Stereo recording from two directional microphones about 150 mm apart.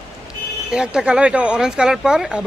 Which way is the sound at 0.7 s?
5° right (ahead or behind).